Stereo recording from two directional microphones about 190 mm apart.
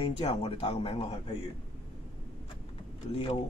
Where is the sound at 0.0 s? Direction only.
30° left (ahead or behind).